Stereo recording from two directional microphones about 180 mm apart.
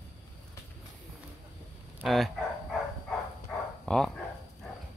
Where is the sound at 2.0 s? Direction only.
Centre (ahead or behind).